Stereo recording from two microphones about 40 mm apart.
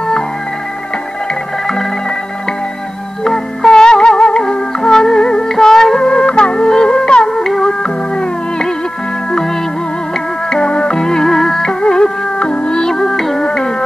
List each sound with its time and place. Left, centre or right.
3.3 s music: centre
7.8 s music: left
11.8 s music: left
12.9 s music: centre
13.5 s music: centre